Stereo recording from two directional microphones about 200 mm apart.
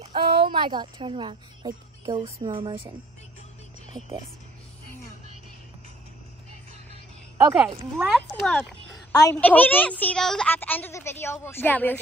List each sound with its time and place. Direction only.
0.0 s speech: 25° right (ahead or behind)
7.3 s speech: 15° right (ahead or behind)
8.4 s a woman's voice: 5° left (ahead or behind)